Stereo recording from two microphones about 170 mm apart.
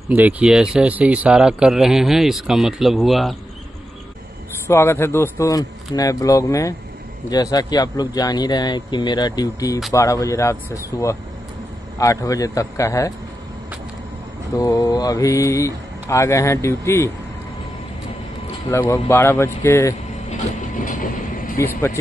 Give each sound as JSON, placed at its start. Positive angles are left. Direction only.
{"t": 0.1, "sound": "speech", "side_deg": -10}
{"t": 4.6, "sound": "speech", "side_deg": 15}
{"t": 14.6, "sound": "speech", "side_deg": 20}
{"t": 18.7, "sound": "speech", "side_deg": 15}
{"t": 20.7, "sound": "vehicle", "side_deg": 55}